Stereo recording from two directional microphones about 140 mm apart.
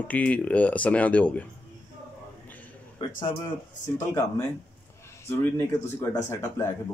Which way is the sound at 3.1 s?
70° left (ahead or behind).